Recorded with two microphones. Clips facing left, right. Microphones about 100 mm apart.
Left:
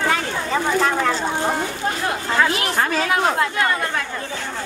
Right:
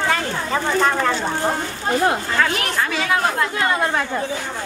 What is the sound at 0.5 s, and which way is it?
Speech, centre (ahead or behind).